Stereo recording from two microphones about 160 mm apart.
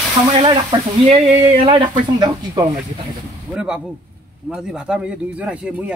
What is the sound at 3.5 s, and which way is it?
A man's voice, 5° right (ahead or behind).